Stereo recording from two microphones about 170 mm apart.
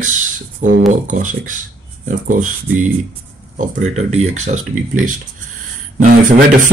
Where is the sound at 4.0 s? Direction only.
40° right (ahead or behind).